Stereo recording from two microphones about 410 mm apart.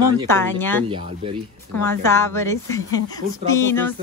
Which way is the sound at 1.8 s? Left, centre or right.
Centre.